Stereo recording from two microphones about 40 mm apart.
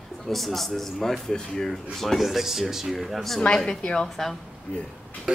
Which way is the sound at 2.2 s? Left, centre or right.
Centre.